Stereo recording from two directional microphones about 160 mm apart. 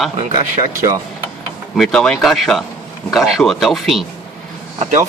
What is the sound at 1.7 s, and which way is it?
Speech, 5° left (ahead or behind).